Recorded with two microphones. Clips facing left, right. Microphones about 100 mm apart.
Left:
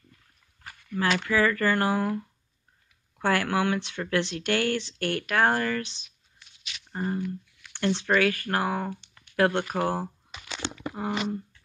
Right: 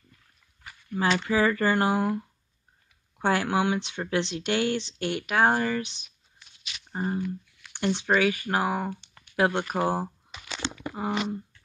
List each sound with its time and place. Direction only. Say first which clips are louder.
0.9 s speech: right 1 dB; 20° right (ahead or behind)
3.2 s speech: right 1 dB; 20° right (ahead or behind)